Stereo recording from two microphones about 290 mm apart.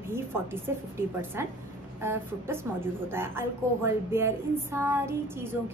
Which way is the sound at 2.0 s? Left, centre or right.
Centre.